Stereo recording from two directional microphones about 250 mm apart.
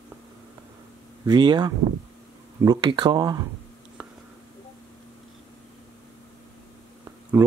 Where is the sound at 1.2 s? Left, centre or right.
Centre.